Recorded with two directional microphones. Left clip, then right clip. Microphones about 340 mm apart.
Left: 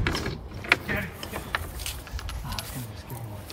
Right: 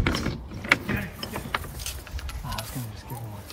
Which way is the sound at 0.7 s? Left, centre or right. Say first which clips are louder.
Even; centre.